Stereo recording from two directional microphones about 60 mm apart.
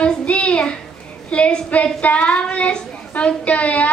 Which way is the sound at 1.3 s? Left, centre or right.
Left.